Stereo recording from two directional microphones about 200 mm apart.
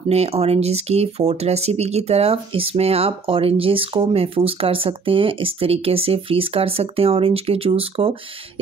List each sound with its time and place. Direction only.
0.1 s speech: 30° right (ahead or behind)